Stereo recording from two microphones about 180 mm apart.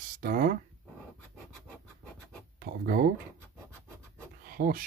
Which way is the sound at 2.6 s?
55° right (ahead or behind).